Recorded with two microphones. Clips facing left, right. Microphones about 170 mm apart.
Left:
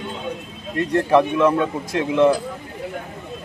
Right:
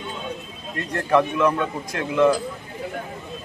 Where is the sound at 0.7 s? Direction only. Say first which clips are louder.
Left 4 dB; 25° left (ahead or behind).